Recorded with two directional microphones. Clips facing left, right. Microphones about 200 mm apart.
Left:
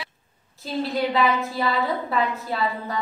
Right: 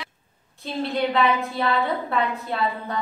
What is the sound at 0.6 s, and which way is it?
Speech, centre (ahead or behind).